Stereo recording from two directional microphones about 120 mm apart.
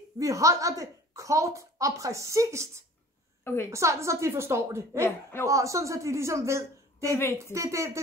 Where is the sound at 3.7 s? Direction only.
25° right (ahead or behind).